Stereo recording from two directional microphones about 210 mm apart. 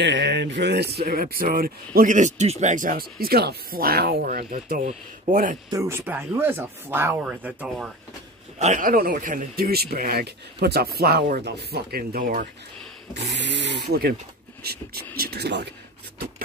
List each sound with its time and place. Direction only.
0.0 s speech: 55° right (ahead or behind); by 5.6 s 40° right (ahead or behind)
5.7 s speech: 15° right (ahead or behind)
8.5 s speech: 35° right (ahead or behind)
13.1 s speech: 55° right (ahead or behind)